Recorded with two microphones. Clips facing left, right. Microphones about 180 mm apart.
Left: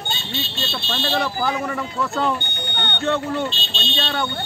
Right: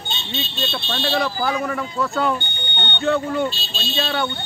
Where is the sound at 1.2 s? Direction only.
Centre (ahead or behind).